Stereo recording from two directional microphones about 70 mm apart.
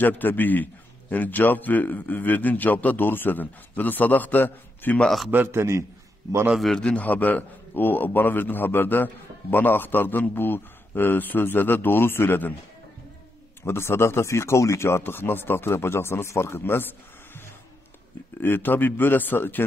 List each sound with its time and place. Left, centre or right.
0.0 s a man's voice: left
5.0 s a man's voice: centre
5.3 s a man's voice: right
6.8 s a man's voice: centre
13.7 s speech: left
18.4 s a man's voice: left